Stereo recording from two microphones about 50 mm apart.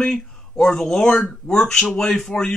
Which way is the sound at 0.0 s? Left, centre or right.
Centre.